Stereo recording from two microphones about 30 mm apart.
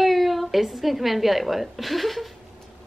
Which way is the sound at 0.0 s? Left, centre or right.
Centre.